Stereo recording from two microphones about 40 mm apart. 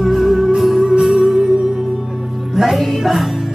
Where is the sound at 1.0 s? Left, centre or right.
Centre.